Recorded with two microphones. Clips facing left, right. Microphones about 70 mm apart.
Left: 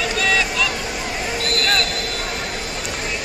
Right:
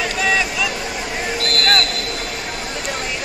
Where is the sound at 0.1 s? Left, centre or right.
Centre.